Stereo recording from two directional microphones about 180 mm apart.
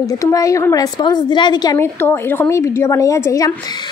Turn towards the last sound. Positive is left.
turn(degrees=15)  # may be behind; listen again after turning